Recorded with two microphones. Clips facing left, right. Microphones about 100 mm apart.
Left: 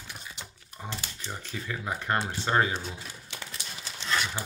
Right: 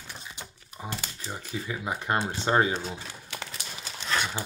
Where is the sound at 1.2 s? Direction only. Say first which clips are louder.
Right 2 dB; 10° right (ahead or behind).